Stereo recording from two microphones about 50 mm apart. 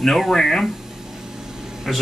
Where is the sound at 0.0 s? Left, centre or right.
Centre.